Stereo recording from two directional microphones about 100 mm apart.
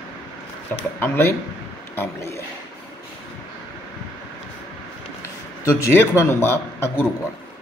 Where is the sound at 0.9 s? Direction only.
20° left (ahead or behind).